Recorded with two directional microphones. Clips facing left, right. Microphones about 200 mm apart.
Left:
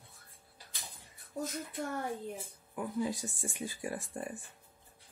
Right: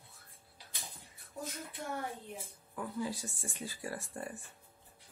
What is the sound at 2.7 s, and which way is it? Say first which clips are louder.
Speech: left 3 dB; 15° left (ahead or behind).